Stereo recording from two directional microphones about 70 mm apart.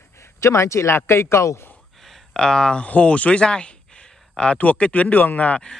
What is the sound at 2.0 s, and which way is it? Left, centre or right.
Speech, centre.